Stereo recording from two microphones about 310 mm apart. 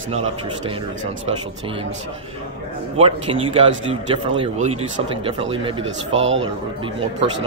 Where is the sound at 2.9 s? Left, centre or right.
Centre.